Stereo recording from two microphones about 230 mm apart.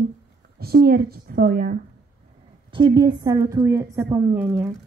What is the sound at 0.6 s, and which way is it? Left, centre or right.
A woman's voice, right.